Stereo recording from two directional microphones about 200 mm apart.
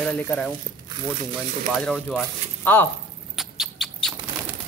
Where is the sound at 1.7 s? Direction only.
Centre (ahead or behind).